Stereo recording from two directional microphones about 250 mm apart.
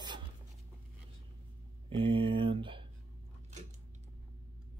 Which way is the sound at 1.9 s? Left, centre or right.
Right.